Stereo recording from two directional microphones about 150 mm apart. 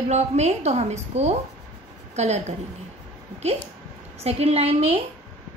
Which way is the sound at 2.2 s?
50° right (ahead or behind).